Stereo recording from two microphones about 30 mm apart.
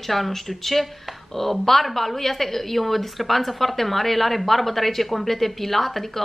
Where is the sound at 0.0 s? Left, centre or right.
Centre.